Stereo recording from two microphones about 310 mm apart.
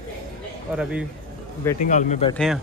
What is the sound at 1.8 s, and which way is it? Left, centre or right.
Speech, left.